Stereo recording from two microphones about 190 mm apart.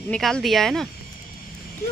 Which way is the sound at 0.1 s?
Centre (ahead or behind).